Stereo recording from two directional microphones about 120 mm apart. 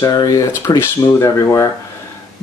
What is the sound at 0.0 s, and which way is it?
Speech, 30° left (ahead or behind).